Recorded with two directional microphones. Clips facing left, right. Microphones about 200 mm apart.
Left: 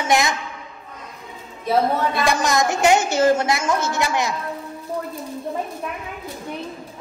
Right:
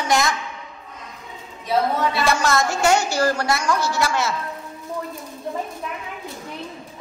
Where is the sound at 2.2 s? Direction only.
15° left (ahead or behind).